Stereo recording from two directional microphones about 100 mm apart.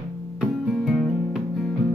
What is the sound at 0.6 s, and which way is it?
Music, centre (ahead or behind).